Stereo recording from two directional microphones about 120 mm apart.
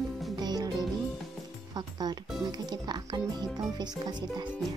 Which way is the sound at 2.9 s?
35° right (ahead or behind).